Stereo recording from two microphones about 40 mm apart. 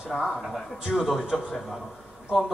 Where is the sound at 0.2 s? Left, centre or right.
Centre.